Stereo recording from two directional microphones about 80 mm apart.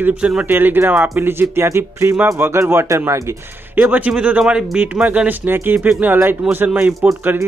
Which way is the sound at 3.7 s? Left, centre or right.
Right.